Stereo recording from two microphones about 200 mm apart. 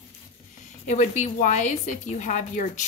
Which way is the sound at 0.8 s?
35° left (ahead or behind).